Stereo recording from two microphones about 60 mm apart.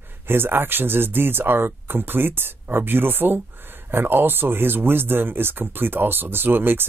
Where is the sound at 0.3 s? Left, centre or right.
Right.